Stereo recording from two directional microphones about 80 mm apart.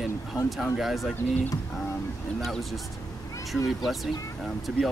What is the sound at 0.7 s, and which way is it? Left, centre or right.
Speech, centre.